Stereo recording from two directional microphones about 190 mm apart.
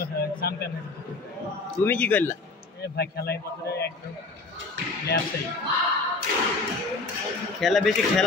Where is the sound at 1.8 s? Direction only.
10° left (ahead or behind).